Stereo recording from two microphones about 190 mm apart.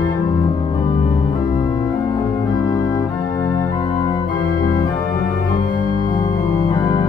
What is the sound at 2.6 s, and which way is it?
Organ, 20° left (ahead or behind).